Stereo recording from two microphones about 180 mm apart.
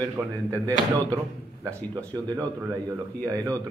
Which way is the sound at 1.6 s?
20° right (ahead or behind).